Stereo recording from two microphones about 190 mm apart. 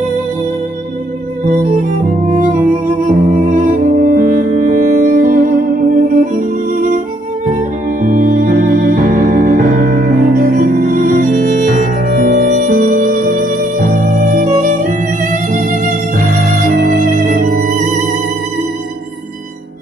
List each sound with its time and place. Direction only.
3.1 s music: 40° right (ahead or behind)
8.0 s music: 45° right (ahead or behind)